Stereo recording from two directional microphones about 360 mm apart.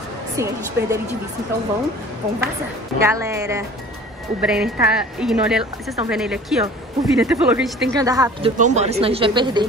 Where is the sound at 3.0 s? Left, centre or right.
Centre.